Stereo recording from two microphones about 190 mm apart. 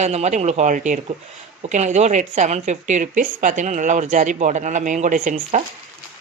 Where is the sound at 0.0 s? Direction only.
35° right (ahead or behind).